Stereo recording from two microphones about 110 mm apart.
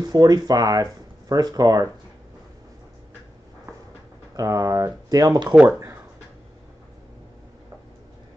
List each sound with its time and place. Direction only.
0.0 s speech: 35° right (ahead or behind)
4.4 s speech: 30° right (ahead or behind)
5.5 s speech: 10° right (ahead or behind)